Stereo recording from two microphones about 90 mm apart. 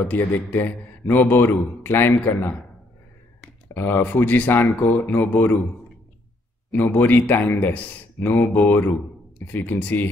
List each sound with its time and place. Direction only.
0.0 s a man's voice: 20° left (ahead or behind)
3.7 s a man's voice: 25° left (ahead or behind)
6.7 s a man's voice: 20° left (ahead or behind)